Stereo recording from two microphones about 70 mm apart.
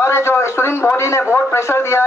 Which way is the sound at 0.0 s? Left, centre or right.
Left.